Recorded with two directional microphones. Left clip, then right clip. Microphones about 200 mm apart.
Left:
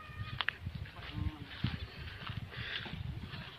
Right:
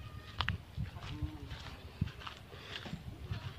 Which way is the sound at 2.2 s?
15° right (ahead or behind).